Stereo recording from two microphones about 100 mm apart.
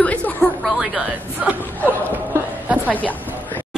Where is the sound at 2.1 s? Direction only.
15° right (ahead or behind).